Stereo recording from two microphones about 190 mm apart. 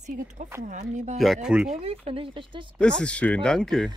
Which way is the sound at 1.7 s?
30° right (ahead or behind).